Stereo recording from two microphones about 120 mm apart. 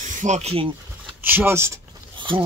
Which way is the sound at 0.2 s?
70° right (ahead or behind).